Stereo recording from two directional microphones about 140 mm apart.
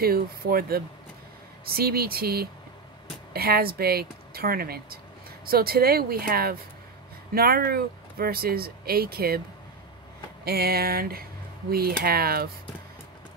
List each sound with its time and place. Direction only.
0.0 s speech: 90° right
10.4 s speech: 90° right